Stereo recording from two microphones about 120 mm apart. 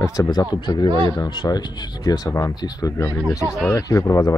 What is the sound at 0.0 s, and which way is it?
Speech, 30° left (ahead or behind).